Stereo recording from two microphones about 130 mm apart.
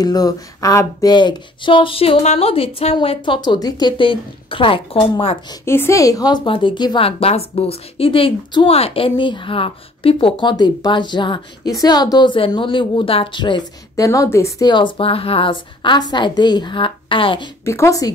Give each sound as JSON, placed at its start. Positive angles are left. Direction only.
{"t": 0.0, "sound": "a woman's voice", "side_deg": 30}
{"t": 5.7, "sound": "a woman's voice", "side_deg": 20}
{"t": 7.1, "sound": "a woman's voice", "side_deg": 50}
{"t": 14.7, "sound": "a woman's voice", "side_deg": 40}
{"t": 17.6, "sound": "speech", "side_deg": 25}